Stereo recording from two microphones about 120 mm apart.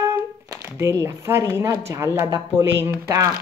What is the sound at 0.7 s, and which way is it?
Speech, 25° right (ahead or behind).